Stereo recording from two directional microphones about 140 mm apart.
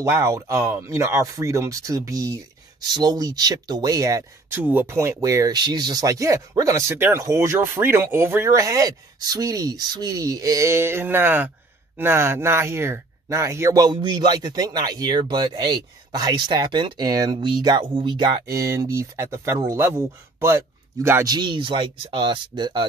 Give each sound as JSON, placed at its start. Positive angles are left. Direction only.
{"t": 0.0, "sound": "speech", "side_deg": -20}
{"t": 4.6, "sound": "speech", "side_deg": -15}